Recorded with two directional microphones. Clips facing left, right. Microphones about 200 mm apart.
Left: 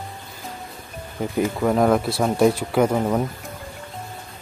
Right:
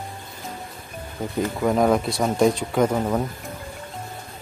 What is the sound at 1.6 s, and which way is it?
Speech, centre (ahead or behind).